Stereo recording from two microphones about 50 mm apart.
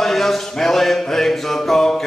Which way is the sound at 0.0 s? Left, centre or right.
Centre.